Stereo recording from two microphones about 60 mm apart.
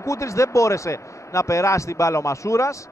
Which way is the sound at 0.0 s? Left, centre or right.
Left.